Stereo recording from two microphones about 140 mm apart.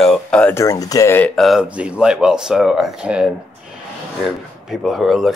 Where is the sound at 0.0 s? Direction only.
5° left (ahead or behind).